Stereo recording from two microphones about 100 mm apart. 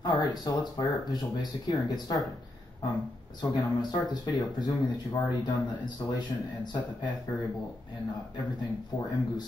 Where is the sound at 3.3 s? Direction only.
45° left (ahead or behind).